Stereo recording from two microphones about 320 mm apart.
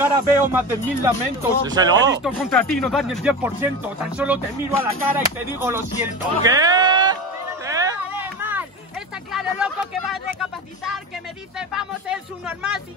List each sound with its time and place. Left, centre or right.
0.0 s speech: centre
2.2 s speech: centre
7.6 s a sound: centre
11.5 s speech: centre